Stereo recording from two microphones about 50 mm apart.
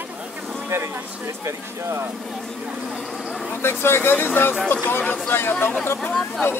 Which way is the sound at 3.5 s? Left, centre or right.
Left.